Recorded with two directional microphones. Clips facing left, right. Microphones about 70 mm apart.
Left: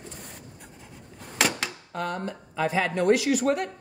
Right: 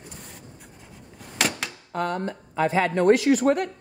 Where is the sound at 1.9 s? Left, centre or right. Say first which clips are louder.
Right 5 dB; right.